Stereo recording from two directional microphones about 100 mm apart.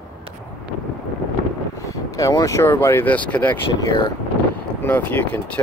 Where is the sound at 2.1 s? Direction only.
35° left (ahead or behind); by 3.6 s 15° left (ahead or behind).